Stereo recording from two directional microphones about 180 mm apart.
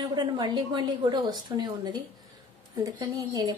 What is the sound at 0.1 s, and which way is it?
Speech, 25° right (ahead or behind).